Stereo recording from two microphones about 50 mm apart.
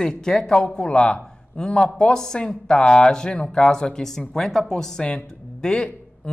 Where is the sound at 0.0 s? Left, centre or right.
Centre.